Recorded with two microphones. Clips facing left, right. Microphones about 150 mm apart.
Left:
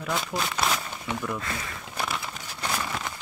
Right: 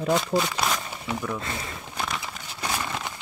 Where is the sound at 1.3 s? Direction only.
25° right (ahead or behind).